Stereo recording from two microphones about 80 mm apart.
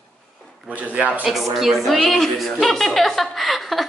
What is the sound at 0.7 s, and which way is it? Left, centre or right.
Speech, centre.